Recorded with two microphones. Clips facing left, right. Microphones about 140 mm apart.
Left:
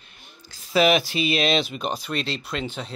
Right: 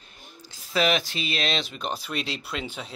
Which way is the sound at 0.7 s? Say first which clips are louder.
Left 5 dB; 10° left (ahead or behind).